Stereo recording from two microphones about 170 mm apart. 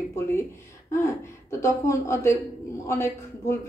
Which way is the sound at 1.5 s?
15° left (ahead or behind).